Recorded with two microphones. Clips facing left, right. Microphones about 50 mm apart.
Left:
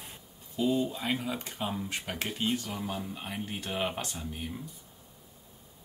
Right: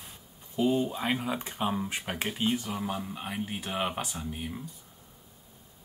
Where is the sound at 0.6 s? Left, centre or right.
Right.